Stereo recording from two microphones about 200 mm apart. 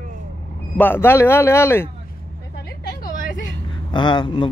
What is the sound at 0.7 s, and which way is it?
Speech, 10° left (ahead or behind).